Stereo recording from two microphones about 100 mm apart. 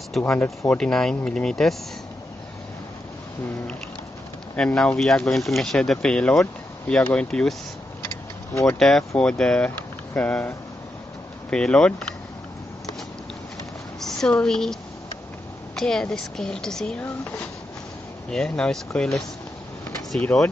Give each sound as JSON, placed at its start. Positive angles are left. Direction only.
{"t": 0.2, "sound": "speech", "side_deg": 5}
{"t": 4.6, "sound": "speech", "side_deg": 10}
{"t": 8.6, "sound": "speech", "side_deg": 5}
{"t": 11.5, "sound": "speech", "side_deg": 5}
{"t": 13.9, "sound": "a woman's voice", "side_deg": 5}
{"t": 18.3, "sound": "speech", "side_deg": 5}
{"t": 20.3, "sound": "speech", "side_deg": 35}